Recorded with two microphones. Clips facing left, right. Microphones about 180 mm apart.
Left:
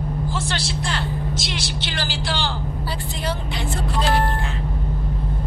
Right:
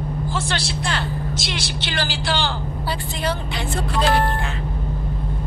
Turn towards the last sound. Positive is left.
turn(degrees=-75)  # may be behind; listen again after turning